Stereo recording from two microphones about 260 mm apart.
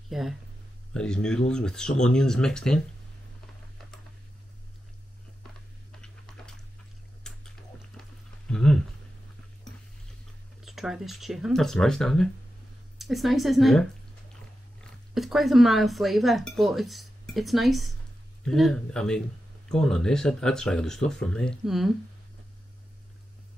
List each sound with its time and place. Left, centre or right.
0.1 s speech: centre
5.9 s typing: centre
8.5 s a sound: centre
10.6 s speech: centre